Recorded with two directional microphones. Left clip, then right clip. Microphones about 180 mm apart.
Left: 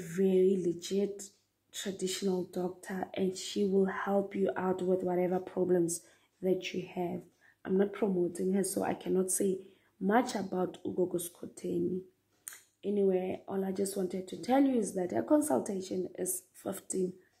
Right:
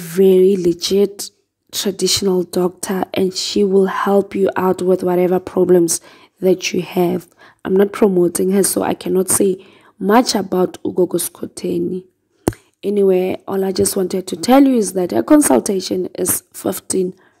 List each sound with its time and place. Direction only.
0.0 s speech: 45° right (ahead or behind)
3.3 s speech: 30° right (ahead or behind)
9.1 s speech: 30° right (ahead or behind)
12.8 s speech: 40° right (ahead or behind)